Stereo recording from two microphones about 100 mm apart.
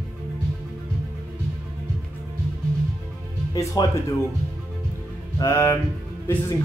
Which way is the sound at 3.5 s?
35° left (ahead or behind).